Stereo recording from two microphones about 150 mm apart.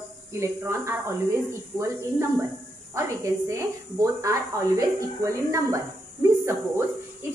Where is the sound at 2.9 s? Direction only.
20° right (ahead or behind).